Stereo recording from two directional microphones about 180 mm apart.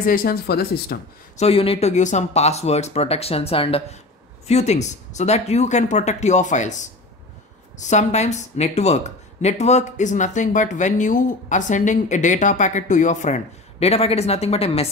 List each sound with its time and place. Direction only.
0.0 s speech: 50° left (ahead or behind)
1.4 s speech: 30° left (ahead or behind)